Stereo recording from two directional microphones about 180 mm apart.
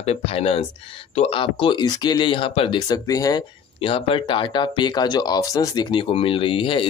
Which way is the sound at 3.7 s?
30° left (ahead or behind).